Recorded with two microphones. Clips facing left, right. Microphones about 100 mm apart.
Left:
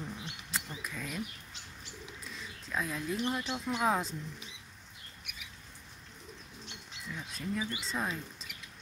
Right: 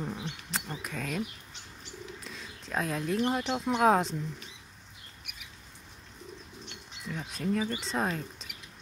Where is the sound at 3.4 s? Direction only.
60° right (ahead or behind).